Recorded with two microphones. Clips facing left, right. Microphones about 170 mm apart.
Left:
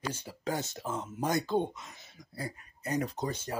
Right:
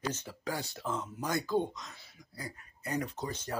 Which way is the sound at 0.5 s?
20° left (ahead or behind).